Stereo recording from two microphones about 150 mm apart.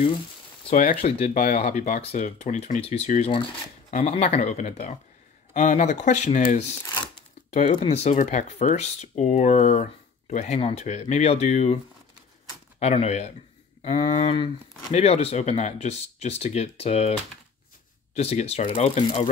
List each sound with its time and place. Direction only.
1.0 s speech: 45° left (ahead or behind)
7.7 s speech: 40° left (ahead or behind)
18.1 s speech: 45° left (ahead or behind)